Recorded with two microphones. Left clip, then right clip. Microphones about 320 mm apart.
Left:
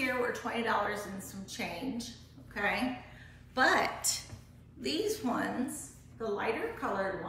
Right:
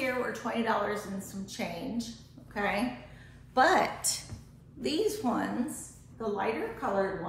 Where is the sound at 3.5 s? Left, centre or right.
Centre.